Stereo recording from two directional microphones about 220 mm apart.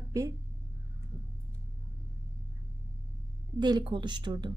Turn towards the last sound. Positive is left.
turn(degrees=-20)  # may be behind; listen again after turning